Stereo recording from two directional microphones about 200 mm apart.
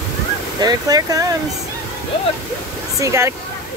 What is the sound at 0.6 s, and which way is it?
Speech, 20° right (ahead or behind).